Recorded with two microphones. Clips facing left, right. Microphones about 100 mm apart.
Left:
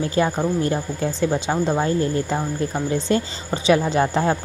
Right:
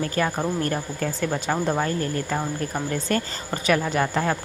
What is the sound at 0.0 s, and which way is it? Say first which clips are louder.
Speech: left 4 dB; 20° left (ahead or behind).